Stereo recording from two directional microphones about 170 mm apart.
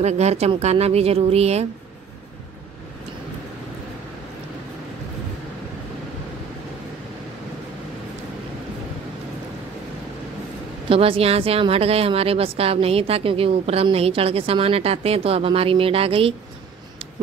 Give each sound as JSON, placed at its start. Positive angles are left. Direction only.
{"t": 0.0, "sound": "speech", "side_deg": -40}
{"t": 10.9, "sound": "speech", "side_deg": -35}